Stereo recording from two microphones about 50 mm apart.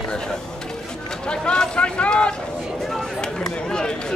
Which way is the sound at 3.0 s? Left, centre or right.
Centre.